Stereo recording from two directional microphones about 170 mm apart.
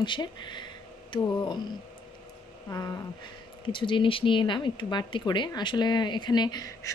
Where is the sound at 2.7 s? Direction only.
20° left (ahead or behind).